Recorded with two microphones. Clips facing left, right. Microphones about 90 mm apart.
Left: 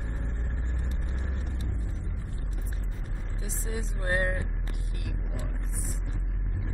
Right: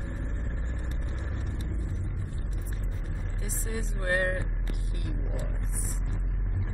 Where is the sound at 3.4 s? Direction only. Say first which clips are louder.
Even; 55° right (ahead or behind).